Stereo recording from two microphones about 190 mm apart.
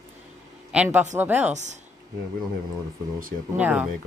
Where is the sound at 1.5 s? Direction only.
40° right (ahead or behind).